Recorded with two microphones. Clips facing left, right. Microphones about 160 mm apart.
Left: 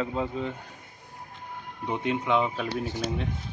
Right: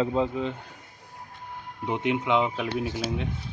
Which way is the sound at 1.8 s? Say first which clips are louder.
Right 2 dB; 15° right (ahead or behind).